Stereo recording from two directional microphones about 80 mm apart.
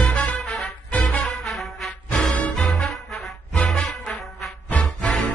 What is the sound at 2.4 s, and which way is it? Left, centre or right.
Music, centre.